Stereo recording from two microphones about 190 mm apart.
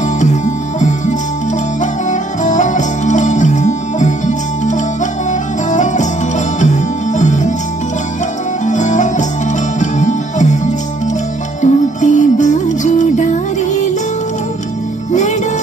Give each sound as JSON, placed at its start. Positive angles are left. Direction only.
{"t": 0.2, "sound": "music", "side_deg": 40}
{"t": 8.6, "sound": "music", "side_deg": 40}
{"t": 11.6, "sound": "music", "side_deg": 40}